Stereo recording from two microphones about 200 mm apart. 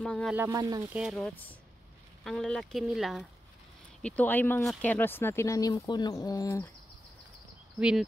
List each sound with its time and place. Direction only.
0.0 s speech: centre (ahead or behind)
0.4 s speech: 15° right (ahead or behind)
0.9 s speech: centre (ahead or behind); by 6.7 s 15° left (ahead or behind)